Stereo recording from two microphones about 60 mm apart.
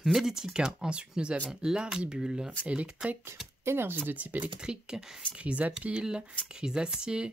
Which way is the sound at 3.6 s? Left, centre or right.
Right.